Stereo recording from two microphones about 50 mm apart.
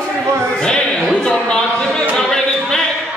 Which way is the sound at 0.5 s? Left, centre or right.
Centre.